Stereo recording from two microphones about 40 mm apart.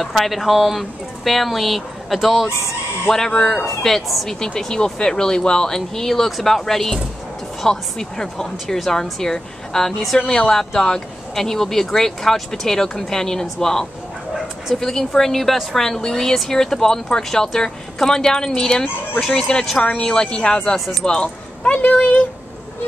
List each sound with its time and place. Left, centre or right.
0.0 s speech: centre
3.1 s speech: centre
20.7 s speech: centre
21.0 s speech: left
21.9 s speech: left